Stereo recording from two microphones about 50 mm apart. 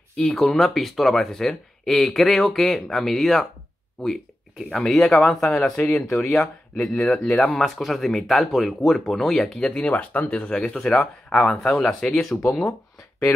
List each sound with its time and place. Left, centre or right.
0.1 s speech: centre
4.6 s speech: centre
12.0 s speech: centre